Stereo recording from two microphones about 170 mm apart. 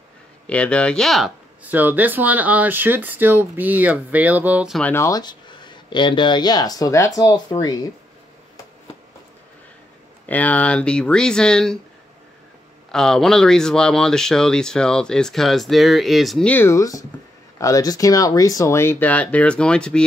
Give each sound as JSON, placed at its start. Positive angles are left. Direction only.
{"t": 0.5, "sound": "speech", "side_deg": 5}
{"t": 4.7, "sound": "speech", "side_deg": 10}
{"t": 10.2, "sound": "speech", "side_deg": 10}
{"t": 12.9, "sound": "speech", "side_deg": 5}